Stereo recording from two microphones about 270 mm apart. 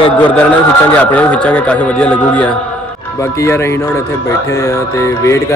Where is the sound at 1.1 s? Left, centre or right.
Centre.